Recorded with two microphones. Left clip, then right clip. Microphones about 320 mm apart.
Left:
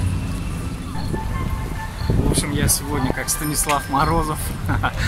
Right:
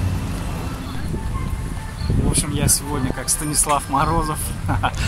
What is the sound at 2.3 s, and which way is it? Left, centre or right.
Speech, centre.